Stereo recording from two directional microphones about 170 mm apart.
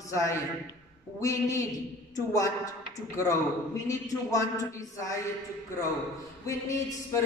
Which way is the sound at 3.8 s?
20° left (ahead or behind).